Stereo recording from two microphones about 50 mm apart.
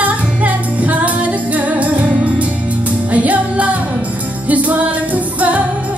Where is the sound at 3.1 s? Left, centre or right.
Right.